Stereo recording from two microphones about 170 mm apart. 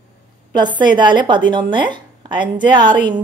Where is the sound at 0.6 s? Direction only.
25° right (ahead or behind).